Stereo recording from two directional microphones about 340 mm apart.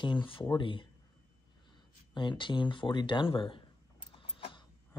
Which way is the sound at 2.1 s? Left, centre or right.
Centre.